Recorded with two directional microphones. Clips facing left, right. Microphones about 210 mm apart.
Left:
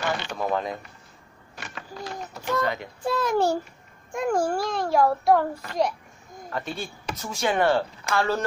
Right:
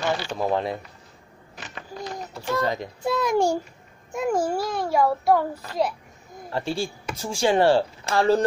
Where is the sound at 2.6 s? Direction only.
35° right (ahead or behind).